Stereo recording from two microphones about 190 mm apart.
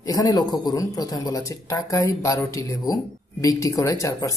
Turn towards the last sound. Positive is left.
turn(degrees=15)  # may be behind; listen again after turning